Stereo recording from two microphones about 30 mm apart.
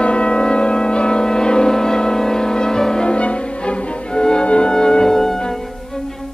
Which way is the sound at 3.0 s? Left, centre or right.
Left.